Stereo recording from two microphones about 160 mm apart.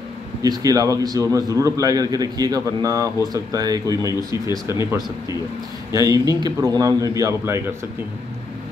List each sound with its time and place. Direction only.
0.4 s a man's voice: 20° right (ahead or behind)
5.9 s a man's voice: 20° right (ahead or behind)